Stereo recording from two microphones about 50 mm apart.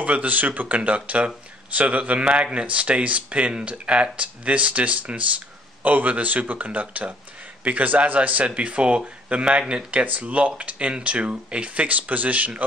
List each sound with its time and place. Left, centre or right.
0.0 s speech: right